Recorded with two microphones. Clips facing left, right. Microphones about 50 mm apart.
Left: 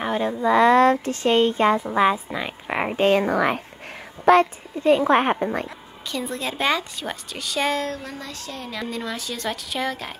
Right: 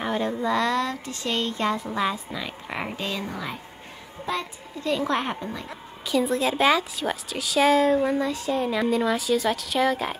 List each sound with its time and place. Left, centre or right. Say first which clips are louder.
0.0 s a sound: left 2 dB; centre
0.5 s speech: left 9 dB; left
0.7 s speech: left 10 dB; left
3.0 s speech: left 12 dB; left
4.3 s a child's voice: left 14 dB; left
4.7 s speech: left 8 dB; left
6.1 s a woman's voice: right 5 dB; centre